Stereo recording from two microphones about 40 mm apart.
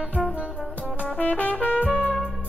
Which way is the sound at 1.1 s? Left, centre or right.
Left.